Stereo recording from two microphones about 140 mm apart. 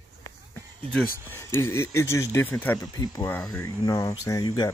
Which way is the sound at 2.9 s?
25° left (ahead or behind).